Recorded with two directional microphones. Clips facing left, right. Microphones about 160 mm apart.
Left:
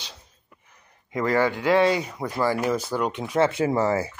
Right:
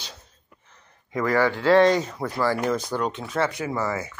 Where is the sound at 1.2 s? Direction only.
20° left (ahead or behind).